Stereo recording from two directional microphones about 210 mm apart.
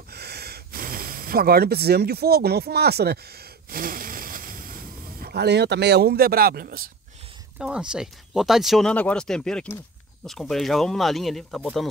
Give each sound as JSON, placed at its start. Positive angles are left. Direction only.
{"t": 0.1, "sound": "gasp", "side_deg": -50}
{"t": 3.7, "sound": "vehicle", "side_deg": -40}
{"t": 5.2, "sound": "speech", "side_deg": -50}
{"t": 7.5, "sound": "speech", "side_deg": -5}